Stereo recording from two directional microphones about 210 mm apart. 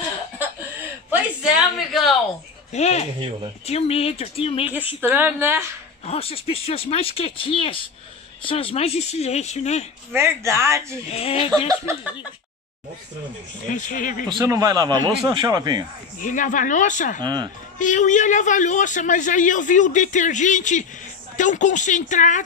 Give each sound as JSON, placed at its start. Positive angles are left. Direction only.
{"t": 0.4, "sound": "cough", "side_deg": -10}
{"t": 1.1, "sound": "a sound", "side_deg": -5}
{"t": 2.7, "sound": "a man's voice", "side_deg": 30}
{"t": 5.0, "sound": "speech", "side_deg": -10}
{"t": 6.0, "sound": "a man's voice", "side_deg": 30}
{"t": 10.1, "sound": "speech", "side_deg": -10}
{"t": 11.1, "sound": "speech", "side_deg": 30}
{"t": 11.8, "sound": "speech", "side_deg": -15}
{"t": 13.7, "sound": "a man's voice", "side_deg": 35}
{"t": 14.4, "sound": "speech", "side_deg": -15}
{"t": 16.2, "sound": "a man's voice", "side_deg": 40}
{"t": 17.2, "sound": "speech", "side_deg": -20}
{"t": 17.7, "sound": "a man's voice", "side_deg": 35}